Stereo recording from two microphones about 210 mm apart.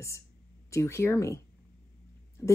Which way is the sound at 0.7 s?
15° left (ahead or behind).